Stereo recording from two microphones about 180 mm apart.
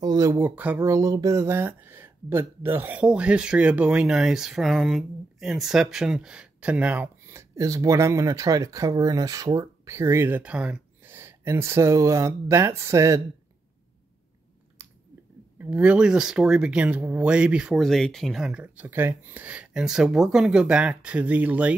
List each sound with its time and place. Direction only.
0.0 s speech: 20° right (ahead or behind)
14.8 s chewing: 15° right (ahead or behind)
15.6 s speech: 10° right (ahead or behind)